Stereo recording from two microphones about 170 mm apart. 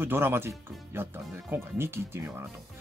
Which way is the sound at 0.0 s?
15° right (ahead or behind).